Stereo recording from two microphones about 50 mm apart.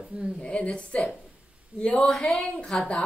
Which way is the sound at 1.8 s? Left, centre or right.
Centre.